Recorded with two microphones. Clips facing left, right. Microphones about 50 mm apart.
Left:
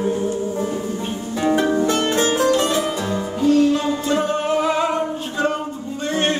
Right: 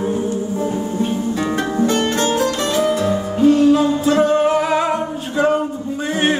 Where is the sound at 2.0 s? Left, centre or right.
Centre.